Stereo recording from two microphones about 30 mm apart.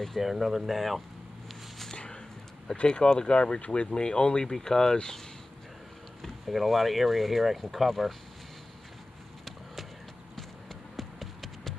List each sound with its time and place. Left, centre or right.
0.2 s speech: centre
2.8 s speech: left
3.9 s speech: left
4.5 s speech: centre
6.5 s speech: centre
10.3 s a sound: centre